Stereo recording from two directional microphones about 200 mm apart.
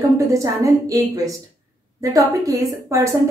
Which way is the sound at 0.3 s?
15° right (ahead or behind).